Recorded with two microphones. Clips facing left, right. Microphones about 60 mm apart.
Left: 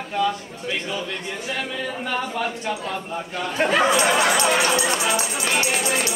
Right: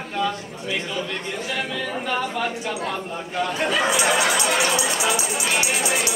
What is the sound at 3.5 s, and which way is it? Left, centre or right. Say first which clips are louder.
Chatter: left 5 dB; left.